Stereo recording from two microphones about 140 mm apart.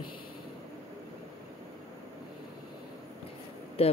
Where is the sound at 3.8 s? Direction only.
45° left (ahead or behind).